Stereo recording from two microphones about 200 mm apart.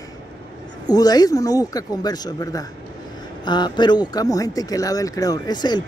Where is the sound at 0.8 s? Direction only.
20° left (ahead or behind).